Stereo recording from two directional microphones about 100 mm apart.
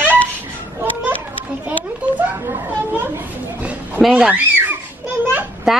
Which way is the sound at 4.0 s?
Centre (ahead or behind).